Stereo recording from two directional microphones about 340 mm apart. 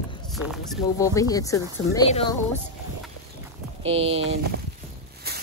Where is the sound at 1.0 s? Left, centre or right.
Centre.